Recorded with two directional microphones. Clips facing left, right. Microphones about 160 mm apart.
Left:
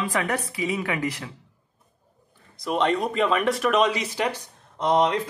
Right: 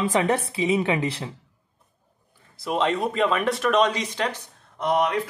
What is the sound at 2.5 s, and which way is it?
Speech, 5° right (ahead or behind).